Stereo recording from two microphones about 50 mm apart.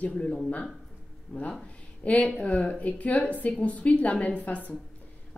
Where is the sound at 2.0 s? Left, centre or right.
Left.